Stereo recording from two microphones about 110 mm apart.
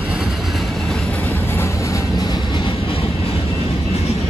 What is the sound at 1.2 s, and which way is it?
Music, 20° left (ahead or behind).